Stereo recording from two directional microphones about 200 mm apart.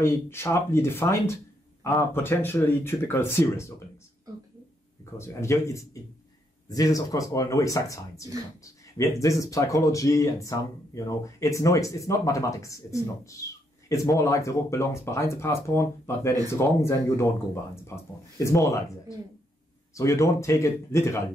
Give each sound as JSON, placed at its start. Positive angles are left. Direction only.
{"t": 0.0, "sound": "speech", "side_deg": 15}
{"t": 5.1, "sound": "speech", "side_deg": 15}